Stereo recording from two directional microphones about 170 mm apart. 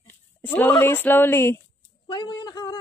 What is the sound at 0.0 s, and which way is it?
Speech, 10° left (ahead or behind).